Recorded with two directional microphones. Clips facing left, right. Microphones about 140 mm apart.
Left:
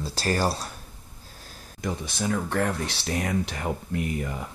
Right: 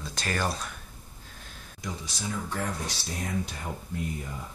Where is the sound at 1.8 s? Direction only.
60° left (ahead or behind).